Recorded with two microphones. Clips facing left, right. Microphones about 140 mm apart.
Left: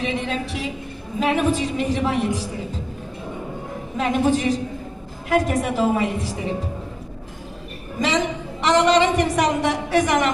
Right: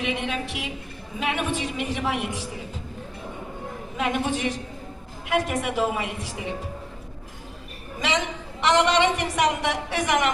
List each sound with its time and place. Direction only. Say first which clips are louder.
0.0 s a sound: left 3 dB; 35° left (ahead or behind)
1.2 s a woman's voice: left 7 dB; 35° left (ahead or behind)
3.9 s a woman's voice: left 6 dB; 35° left (ahead or behind)
8.0 s a woman's voice: left 5 dB; 35° left (ahead or behind)